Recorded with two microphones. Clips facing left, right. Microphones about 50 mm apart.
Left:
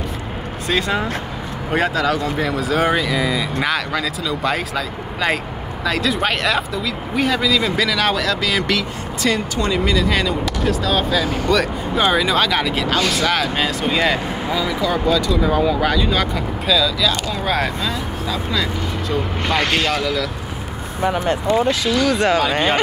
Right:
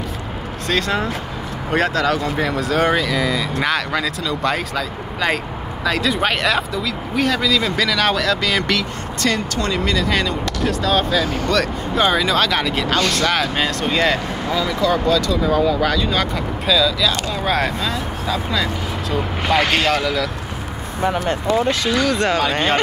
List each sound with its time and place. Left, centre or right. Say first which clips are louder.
0.7 s speech: even; centre
21.6 s speech: left 1 dB; centre